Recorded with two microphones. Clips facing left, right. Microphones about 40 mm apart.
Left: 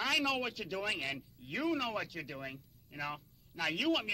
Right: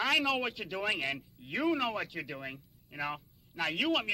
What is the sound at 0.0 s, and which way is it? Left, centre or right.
A man's voice, centre.